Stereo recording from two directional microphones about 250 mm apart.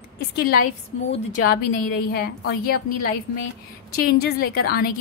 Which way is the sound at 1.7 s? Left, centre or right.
Left.